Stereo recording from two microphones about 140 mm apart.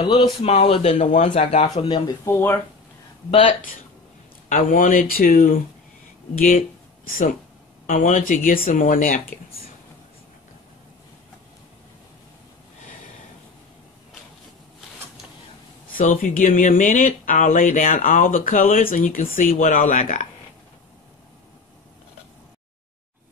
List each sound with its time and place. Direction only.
0.0 s speech: 40° left (ahead or behind)
0.9 s speech: 60° left (ahead or behind)
1.3 s speech: 50° left (ahead or behind)
1.8 s speech: 35° left (ahead or behind)
2.2 s speech: 15° left (ahead or behind)
4.5 s speech: 70° left (ahead or behind)
7.1 s speech: 85° left
7.8 s speech: 65° left (ahead or behind)
16.0 s speech: 80° left
19.7 s speech: 60° left (ahead or behind)